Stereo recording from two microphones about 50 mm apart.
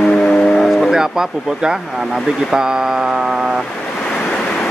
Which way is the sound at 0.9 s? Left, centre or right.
Centre.